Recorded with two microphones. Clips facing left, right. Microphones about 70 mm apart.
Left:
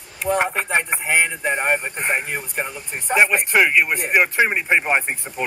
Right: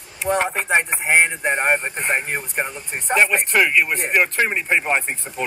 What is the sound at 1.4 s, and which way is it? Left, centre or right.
Speech, centre.